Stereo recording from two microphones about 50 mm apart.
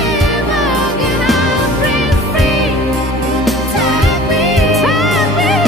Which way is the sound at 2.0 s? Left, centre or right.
Centre.